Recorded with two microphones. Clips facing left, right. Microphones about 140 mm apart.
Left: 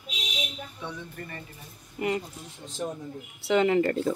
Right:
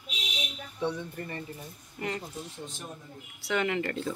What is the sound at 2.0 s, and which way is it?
Speech, 15° left (ahead or behind).